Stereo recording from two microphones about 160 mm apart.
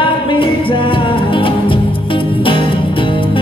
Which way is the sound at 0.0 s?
30° left (ahead or behind).